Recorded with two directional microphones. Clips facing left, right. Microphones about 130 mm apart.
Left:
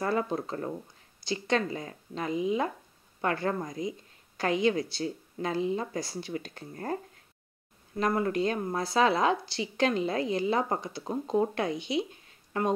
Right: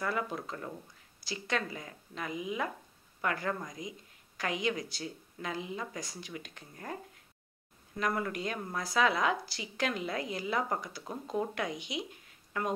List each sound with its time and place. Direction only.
0.0 s speech: 30° left (ahead or behind)
8.0 s speech: 30° left (ahead or behind)